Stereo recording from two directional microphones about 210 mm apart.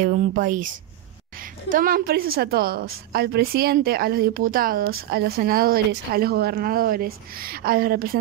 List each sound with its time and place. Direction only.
0.0 s speech: 40° right (ahead or behind)
1.7 s a woman's voice: 45° right (ahead or behind)